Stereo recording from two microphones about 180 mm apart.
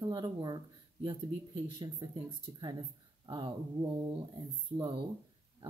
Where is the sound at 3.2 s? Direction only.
25° right (ahead or behind).